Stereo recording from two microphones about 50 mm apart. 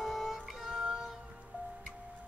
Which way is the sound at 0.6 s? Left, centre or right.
Centre.